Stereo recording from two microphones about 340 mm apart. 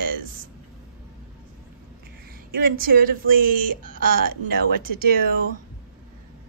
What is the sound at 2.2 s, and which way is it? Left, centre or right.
A woman's voice, right.